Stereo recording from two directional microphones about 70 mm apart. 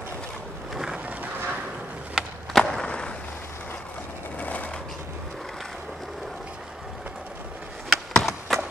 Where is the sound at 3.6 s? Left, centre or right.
Left.